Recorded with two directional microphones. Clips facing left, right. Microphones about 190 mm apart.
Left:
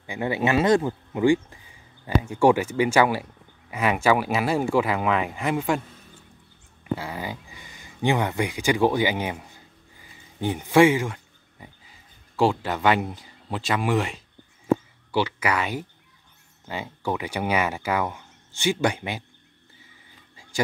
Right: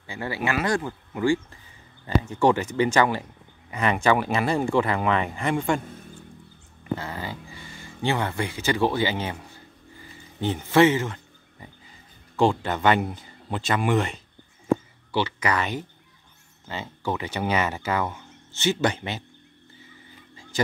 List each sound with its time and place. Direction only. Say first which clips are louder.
0.0 s speech: left 4 dB; 20° left (ahead or behind); by 5.8 s 5° left (ahead or behind)
7.0 s speech: left 1 dB; 10° left (ahead or behind)
12.4 s speech: even; 5° left (ahead or behind)
20.5 s a sound: even; 10° left (ahead or behind)